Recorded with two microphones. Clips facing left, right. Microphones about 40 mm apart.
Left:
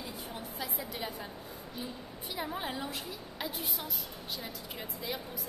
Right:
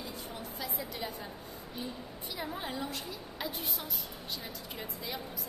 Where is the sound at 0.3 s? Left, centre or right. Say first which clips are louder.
Left 1 dB; centre.